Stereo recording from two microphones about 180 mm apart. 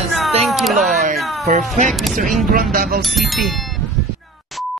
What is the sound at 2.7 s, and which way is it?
Speech, 55° right (ahead or behind).